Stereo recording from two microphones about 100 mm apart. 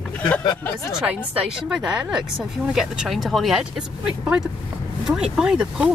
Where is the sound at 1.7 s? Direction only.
5° right (ahead or behind).